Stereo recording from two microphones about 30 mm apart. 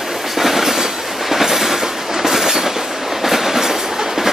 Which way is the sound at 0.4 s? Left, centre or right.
Centre.